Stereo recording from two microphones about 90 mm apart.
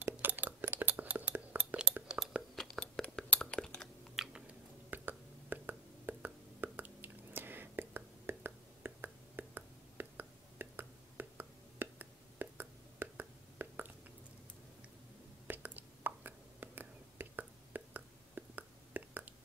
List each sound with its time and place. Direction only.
0.0 s a sound: 20° right (ahead or behind)
2.1 s chewing: centre (ahead or behind)
2.8 s chewing: 15° left (ahead or behind)
4.1 s chewing: 5° right (ahead or behind)
4.9 s a sound: 20° right (ahead or behind)
15.4 s whispering: 20° right (ahead or behind)